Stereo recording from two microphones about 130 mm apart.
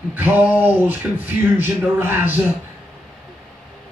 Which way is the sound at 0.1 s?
15° right (ahead or behind).